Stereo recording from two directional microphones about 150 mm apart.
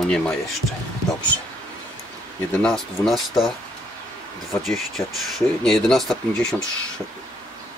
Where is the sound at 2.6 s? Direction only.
5° left (ahead or behind).